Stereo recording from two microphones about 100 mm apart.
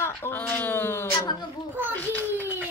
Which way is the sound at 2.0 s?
15° left (ahead or behind).